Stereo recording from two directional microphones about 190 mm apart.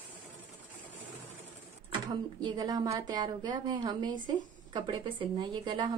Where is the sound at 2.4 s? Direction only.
20° right (ahead or behind).